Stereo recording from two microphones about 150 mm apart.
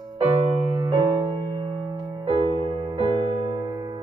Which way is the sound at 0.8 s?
20° right (ahead or behind).